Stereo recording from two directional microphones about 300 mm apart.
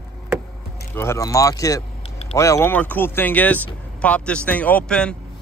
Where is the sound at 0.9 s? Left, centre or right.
Centre.